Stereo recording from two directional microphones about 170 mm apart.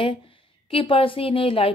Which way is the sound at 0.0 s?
30° left (ahead or behind).